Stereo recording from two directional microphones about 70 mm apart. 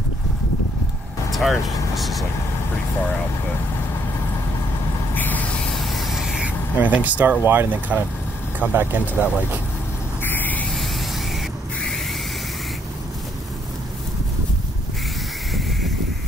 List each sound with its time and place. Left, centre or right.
1.3 s speech: centre
5.1 s vehicle: left
5.8 s vehicle: centre
6.4 s speech: right
10.2 s owl: left